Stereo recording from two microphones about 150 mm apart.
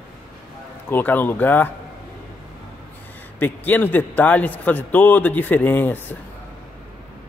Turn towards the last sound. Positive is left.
turn(degrees=15)  # may be behind; listen again after turning